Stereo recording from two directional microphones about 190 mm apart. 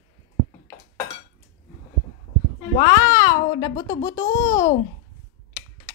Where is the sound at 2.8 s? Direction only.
20° left (ahead or behind).